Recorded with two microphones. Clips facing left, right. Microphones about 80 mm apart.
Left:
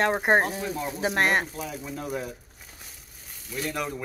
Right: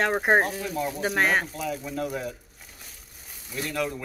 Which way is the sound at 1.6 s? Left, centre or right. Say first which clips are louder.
Right 4 dB; left.